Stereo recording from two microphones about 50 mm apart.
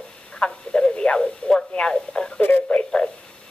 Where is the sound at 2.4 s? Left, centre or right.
Left.